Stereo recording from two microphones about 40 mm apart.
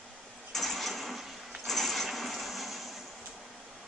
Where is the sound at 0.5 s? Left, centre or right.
Centre.